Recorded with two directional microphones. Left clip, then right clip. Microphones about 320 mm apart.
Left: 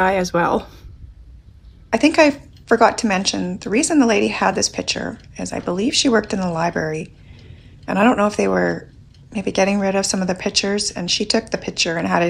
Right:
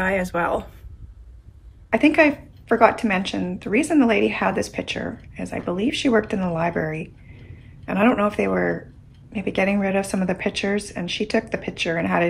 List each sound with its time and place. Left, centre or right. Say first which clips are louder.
0.0 s a woman's voice: left 5 dB; centre
1.9 s a woman's voice: left 2 dB; centre